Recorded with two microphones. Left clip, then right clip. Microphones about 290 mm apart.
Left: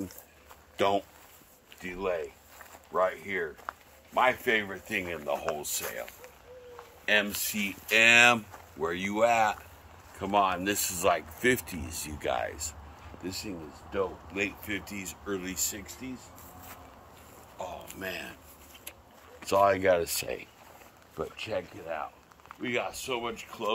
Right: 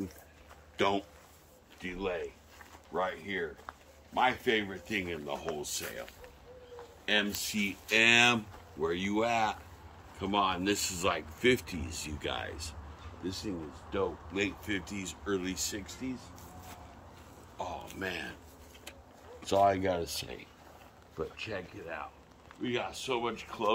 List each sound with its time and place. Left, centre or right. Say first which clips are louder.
0.7 s speech: left 3 dB; left; by 5.8 s centre
7.1 s speech: left 4 dB; centre
13.9 s speech: left 2 dB; centre
17.6 s speech: even; centre
19.4 s speech: left 3 dB; centre
21.2 s speech: left 4 dB; left
22.6 s speech: left 3 dB; centre